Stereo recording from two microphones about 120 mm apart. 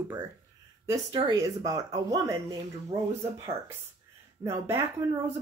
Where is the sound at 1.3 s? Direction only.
30° right (ahead or behind).